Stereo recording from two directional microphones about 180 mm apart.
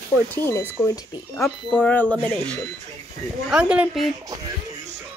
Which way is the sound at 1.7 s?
5° left (ahead or behind).